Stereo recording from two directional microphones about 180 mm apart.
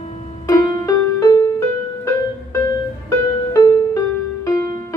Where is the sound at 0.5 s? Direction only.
15° left (ahead or behind).